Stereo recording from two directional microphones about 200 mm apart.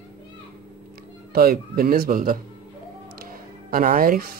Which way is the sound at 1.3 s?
50° right (ahead or behind).